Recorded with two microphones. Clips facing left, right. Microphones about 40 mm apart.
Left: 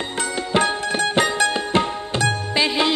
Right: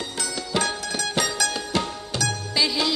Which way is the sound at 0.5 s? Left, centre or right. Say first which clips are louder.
Left 6 dB; left.